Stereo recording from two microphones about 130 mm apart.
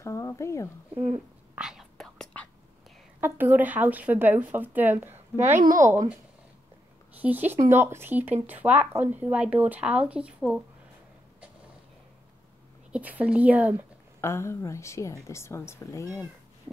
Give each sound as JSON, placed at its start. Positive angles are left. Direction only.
{"t": 0.0, "sound": "a sound", "side_deg": 25}
{"t": 0.9, "sound": "whispering", "side_deg": -10}
{"t": 3.2, "sound": "speech", "side_deg": -15}
{"t": 5.6, "sound": "speech", "side_deg": -90}
{"t": 7.2, "sound": "speech", "side_deg": -15}
{"t": 12.9, "sound": "speech", "side_deg": -10}
{"t": 14.2, "sound": "a woman's voice", "side_deg": 20}